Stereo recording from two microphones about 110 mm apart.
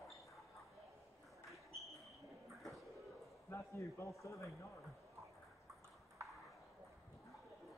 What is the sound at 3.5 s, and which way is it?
Speech, 25° left (ahead or behind).